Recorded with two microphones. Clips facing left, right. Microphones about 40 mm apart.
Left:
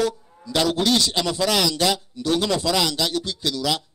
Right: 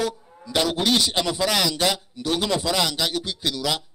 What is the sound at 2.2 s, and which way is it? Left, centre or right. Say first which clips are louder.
A man's voice: left 2 dB; right.